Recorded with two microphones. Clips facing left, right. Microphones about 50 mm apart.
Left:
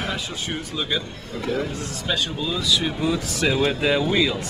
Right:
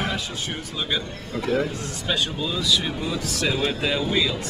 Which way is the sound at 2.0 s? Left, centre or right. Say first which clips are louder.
Even; centre.